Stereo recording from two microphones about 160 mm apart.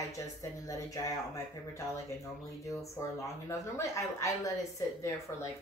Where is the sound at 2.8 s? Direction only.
20° left (ahead or behind).